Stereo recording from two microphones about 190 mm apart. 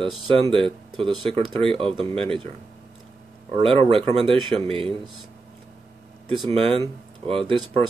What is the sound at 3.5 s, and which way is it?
Speech, 30° right (ahead or behind).